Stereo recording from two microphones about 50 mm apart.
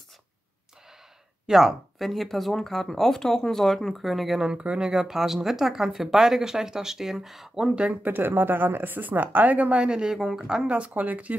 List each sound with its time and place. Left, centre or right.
1.5 s speech: centre
4.4 s speech: centre
4.9 s speech: centre
7.7 s speech: right
9.8 s speech: centre
10.4 s speech: centre
10.7 s speech: right